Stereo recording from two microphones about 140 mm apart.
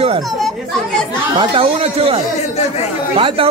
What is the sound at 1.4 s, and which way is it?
Speech, 40° right (ahead or behind).